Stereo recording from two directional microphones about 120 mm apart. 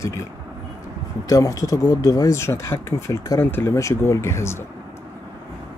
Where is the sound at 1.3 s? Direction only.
30° left (ahead or behind).